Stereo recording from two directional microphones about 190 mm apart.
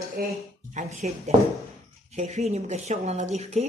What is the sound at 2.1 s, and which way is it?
A woman's voice, 35° right (ahead or behind).